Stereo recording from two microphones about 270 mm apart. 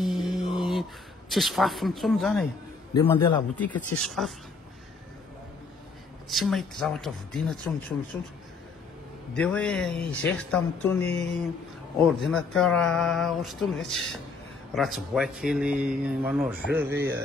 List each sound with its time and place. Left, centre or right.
0.0 s mantra: centre
1.3 s speech: centre
2.9 s a man's voice: centre
3.5 s speech: centre
6.2 s speech: centre
9.3 s speech: centre